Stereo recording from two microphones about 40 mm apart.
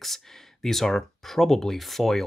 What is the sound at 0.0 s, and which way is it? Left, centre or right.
Speech, centre.